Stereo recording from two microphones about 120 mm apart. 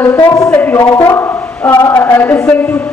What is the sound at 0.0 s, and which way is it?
A woman's voice, 20° left (ahead or behind).